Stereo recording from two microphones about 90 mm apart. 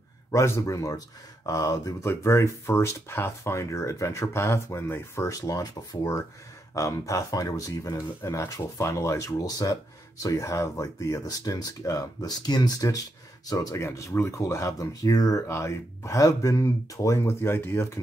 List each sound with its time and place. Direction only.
0.3 s speech: 35° left (ahead or behind)